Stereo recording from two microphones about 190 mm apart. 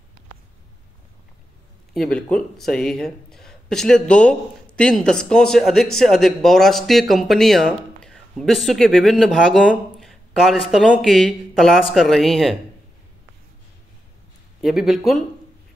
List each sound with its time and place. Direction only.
2.0 s speech: 5° left (ahead or behind)
14.6 s speech: centre (ahead or behind)